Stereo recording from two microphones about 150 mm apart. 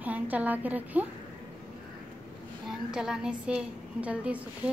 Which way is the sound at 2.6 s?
5° right (ahead or behind).